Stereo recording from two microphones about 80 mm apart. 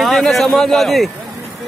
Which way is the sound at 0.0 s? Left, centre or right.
Centre.